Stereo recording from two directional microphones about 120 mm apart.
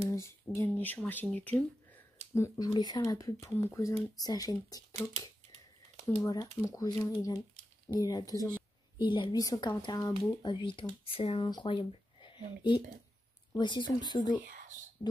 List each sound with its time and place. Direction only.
0.1 s speech: 20° left (ahead or behind)
2.6 s speech: 35° left (ahead or behind)
15.0 s a sound: 45° left (ahead or behind)